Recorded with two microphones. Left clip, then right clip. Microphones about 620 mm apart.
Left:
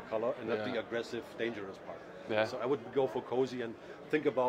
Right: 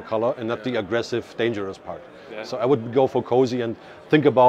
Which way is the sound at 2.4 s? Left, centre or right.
Right.